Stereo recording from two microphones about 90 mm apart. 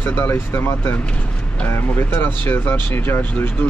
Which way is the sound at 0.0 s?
25° left (ahead or behind).